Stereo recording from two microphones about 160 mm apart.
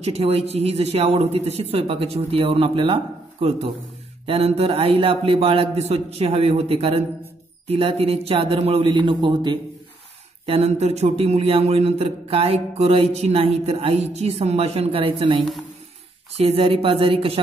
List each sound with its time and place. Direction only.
0.0 s a man's voice: 40° right (ahead or behind)